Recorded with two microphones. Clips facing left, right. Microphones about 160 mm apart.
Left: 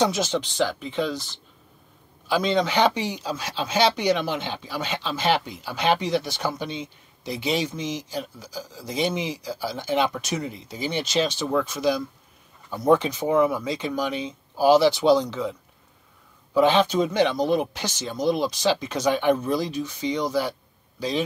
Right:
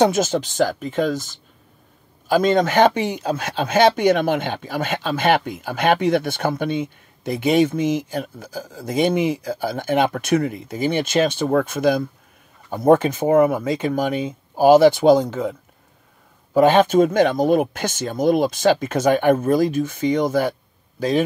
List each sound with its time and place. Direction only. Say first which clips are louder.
0.0 s speech: right 6 dB; 50° right (ahead or behind)
16.5 s speech: right 5 dB; 50° right (ahead or behind)